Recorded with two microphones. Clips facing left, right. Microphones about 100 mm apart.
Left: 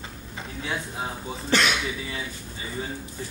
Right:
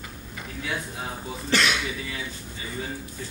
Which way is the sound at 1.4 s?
45° left (ahead or behind).